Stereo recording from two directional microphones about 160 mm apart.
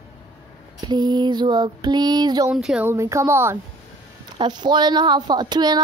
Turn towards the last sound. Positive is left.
turn(degrees=-25)  # may be behind; listen again after turning